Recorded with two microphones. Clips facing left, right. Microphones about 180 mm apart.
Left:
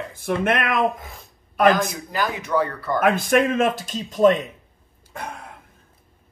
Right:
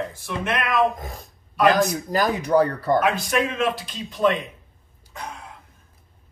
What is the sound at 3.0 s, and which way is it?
Speech, 50° left (ahead or behind).